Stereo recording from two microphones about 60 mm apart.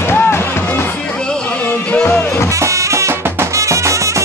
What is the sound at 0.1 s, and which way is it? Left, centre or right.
Music, left.